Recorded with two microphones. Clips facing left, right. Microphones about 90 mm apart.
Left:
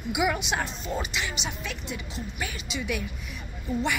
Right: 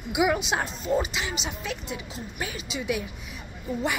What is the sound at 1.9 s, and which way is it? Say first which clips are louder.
Speech: even; 35° right (ahead or behind).